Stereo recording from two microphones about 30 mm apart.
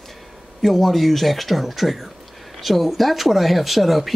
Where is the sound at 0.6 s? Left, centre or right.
Centre.